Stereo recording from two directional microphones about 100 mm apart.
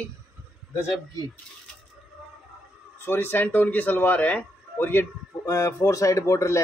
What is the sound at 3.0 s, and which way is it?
Speech, 20° left (ahead or behind).